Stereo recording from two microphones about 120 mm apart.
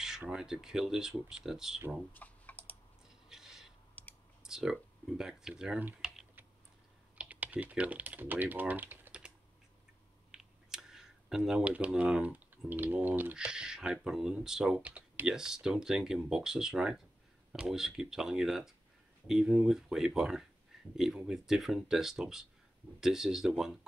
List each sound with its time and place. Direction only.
0.2 s speech: 5° right (ahead or behind)
2.1 s typing: 15° left (ahead or behind)
3.3 s a sound: 5° right (ahead or behind)
4.0 s computer keyboard: 15° left (ahead or behind)
4.4 s speech: 5° right (ahead or behind)
5.9 s typing: 5° right (ahead or behind)
7.2 s speech: 10° right (ahead or behind)
10.3 s speech: 5° right (ahead or behind)